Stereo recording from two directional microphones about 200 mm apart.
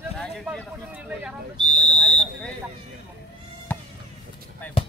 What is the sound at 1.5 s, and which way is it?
Speech, 20° right (ahead or behind).